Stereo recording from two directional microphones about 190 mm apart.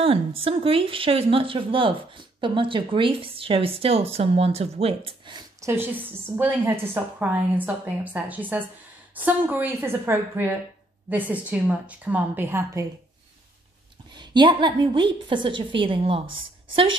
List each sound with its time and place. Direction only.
0.0 s speech: 30° right (ahead or behind)
5.7 s a woman's voice: 10° right (ahead or behind)
14.1 s speech: 25° right (ahead or behind)